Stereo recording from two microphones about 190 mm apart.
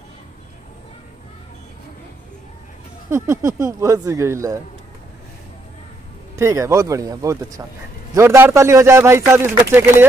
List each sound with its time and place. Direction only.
3.1 s a man's voice: 15° right (ahead or behind)
6.3 s a man's voice: 15° right (ahead or behind)